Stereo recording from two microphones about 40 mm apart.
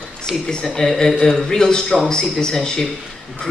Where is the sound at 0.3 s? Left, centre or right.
Centre.